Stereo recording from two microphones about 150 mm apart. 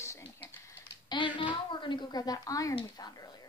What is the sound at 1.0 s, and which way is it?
Speech, 30° left (ahead or behind).